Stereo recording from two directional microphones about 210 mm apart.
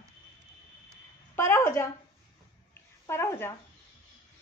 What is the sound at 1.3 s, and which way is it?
Speech, 10° left (ahead or behind).